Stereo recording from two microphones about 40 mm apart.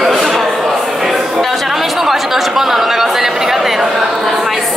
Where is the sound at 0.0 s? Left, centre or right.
Centre.